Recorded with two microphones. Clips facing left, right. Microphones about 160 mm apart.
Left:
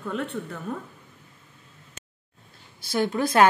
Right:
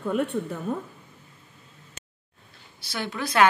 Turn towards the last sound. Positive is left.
turn(degrees=45)  # may be behind; listen again after turning